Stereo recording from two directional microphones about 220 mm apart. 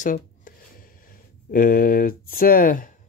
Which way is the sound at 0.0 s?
40° left (ahead or behind).